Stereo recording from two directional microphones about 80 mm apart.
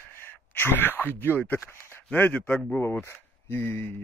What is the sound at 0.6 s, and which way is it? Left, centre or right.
Speech, left.